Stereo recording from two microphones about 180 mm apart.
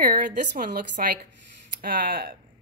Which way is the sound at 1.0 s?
50° right (ahead or behind).